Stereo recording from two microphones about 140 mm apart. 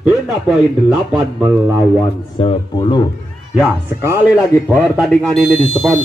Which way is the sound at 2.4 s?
35° left (ahead or behind).